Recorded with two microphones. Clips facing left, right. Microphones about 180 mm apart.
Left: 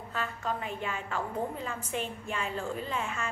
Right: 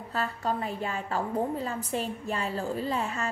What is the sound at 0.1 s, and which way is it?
A woman's voice, 35° right (ahead or behind).